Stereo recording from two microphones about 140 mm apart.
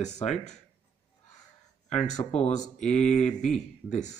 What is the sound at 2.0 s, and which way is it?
Speech, 55° left (ahead or behind).